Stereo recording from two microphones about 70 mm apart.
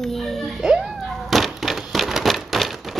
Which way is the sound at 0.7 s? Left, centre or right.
Centre.